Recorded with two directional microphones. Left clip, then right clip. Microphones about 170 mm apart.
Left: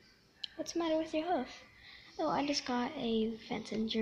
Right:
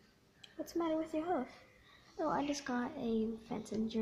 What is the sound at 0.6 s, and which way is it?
A woman's voice, 10° left (ahead or behind).